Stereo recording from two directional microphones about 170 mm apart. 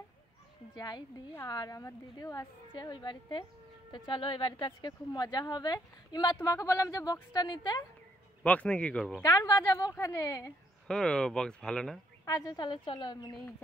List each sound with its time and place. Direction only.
0.7 s a woman's voice: 25° left (ahead or behind)
8.5 s speech: 5° left (ahead or behind)
9.2 s a woman's voice: 20° left (ahead or behind)
10.9 s speech: 5° left (ahead or behind)
12.3 s a woman's voice: 20° left (ahead or behind)